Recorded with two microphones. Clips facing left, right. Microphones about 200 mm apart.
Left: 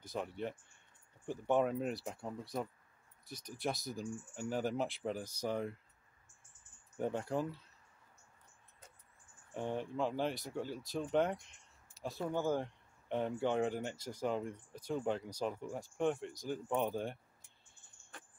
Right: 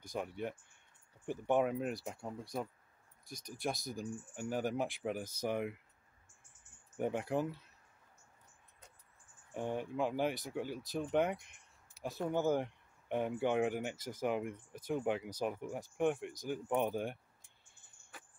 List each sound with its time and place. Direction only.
0.1 s speech: 10° right (ahead or behind)
3.5 s speech: 10° right (ahead or behind)
7.0 s speech: 15° right (ahead or behind)
9.5 s speech: 10° right (ahead or behind)
12.3 s speech: 20° right (ahead or behind)